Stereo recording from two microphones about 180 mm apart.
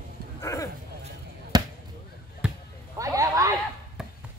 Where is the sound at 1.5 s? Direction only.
25° right (ahead or behind).